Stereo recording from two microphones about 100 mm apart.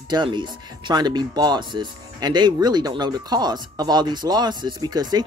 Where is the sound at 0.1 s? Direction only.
50° right (ahead or behind).